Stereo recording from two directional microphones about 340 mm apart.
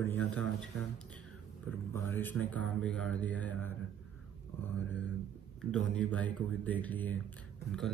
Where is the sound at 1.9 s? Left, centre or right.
Centre.